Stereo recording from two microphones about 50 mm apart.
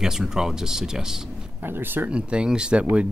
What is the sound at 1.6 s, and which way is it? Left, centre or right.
Speech, right.